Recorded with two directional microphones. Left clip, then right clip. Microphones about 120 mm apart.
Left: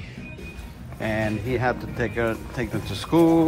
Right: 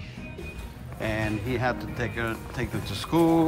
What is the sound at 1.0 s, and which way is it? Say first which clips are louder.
Speech: left 3 dB; 20° right (ahead or behind).